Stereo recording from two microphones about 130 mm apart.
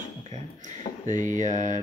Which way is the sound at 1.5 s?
35° left (ahead or behind).